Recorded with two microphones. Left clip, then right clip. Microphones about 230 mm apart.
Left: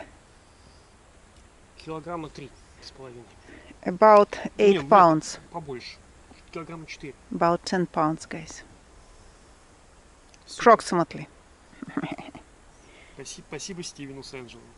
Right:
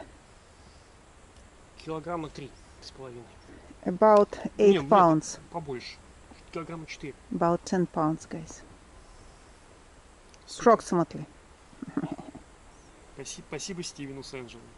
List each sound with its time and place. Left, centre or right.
1.8 s speech: centre
10.4 s speech: centre
11.9 s a sound: centre
13.2 s speech: centre